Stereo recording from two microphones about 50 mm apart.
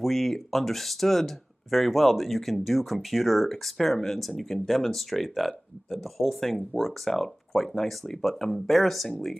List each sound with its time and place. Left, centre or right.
0.0 s speech: centre